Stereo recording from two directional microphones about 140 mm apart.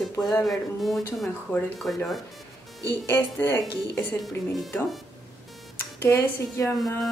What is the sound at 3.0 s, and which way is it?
Speech, 15° left (ahead or behind).